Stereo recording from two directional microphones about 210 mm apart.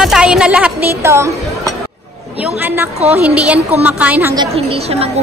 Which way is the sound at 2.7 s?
10° right (ahead or behind).